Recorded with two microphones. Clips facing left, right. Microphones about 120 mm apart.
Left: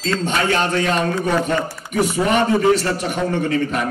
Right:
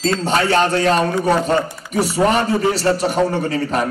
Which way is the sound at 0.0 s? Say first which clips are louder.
Right 3 dB; 35° right (ahead or behind).